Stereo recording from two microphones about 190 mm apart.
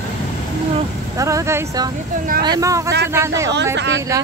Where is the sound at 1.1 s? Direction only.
15° right (ahead or behind).